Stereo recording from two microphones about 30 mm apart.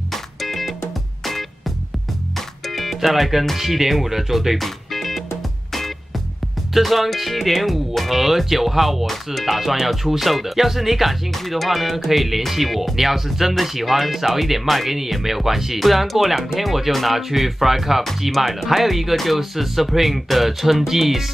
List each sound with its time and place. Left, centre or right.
0.1 s music: centre
2.7 s music: centre
3.5 s speech: centre
4.6 s music: centre
6.7 s speech: centre
11.3 s speech: centre
19.1 s speech: centre
19.5 s speech: centre